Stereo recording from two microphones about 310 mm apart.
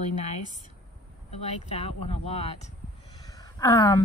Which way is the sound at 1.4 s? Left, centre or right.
Centre.